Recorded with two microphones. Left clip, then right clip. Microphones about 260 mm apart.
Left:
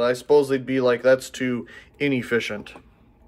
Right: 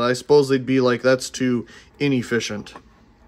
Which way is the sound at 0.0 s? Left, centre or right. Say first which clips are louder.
Right 2 dB; right.